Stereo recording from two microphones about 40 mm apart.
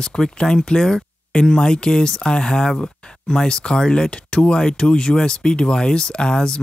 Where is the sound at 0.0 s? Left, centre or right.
Left.